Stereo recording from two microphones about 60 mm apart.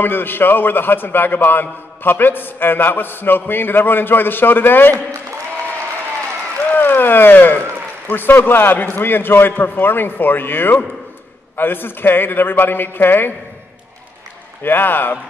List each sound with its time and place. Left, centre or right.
0.0 s a man's voice: left
6.7 s a sound: left
8.1 s a man's voice: left
14.6 s a man's voice: left